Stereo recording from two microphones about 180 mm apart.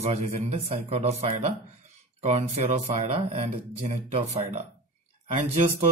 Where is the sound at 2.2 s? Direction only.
40° right (ahead or behind).